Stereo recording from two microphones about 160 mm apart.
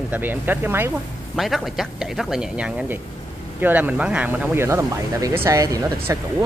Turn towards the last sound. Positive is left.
turn(degrees=-20)  # may be behind; listen again after turning